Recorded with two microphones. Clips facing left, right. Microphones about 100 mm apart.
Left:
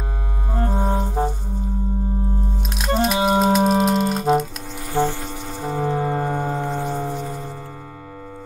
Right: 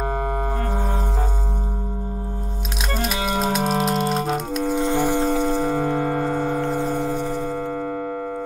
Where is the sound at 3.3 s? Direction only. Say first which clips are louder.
Left 3 dB; centre (ahead or behind).